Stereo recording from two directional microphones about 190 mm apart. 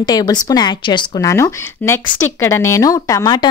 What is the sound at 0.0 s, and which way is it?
A woman's voice, 20° left (ahead or behind).